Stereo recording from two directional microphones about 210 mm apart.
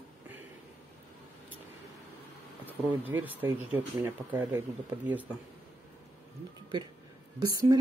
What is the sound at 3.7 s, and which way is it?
Speech, 10° right (ahead or behind).